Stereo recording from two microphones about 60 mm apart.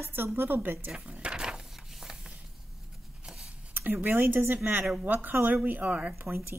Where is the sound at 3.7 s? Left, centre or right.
Right.